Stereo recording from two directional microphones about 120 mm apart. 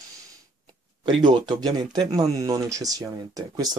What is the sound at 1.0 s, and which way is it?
Speech, 40° right (ahead or behind).